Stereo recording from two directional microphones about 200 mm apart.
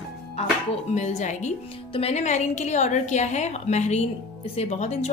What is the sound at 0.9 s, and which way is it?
A woman's voice, 35° left (ahead or behind).